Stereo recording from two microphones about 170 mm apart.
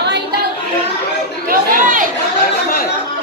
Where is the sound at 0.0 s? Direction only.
80° right.